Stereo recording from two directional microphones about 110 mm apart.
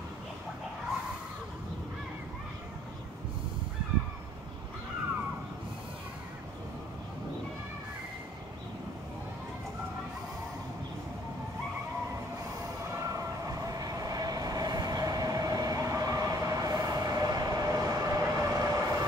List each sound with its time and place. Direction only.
12.9 s vehicle: 30° right (ahead or behind)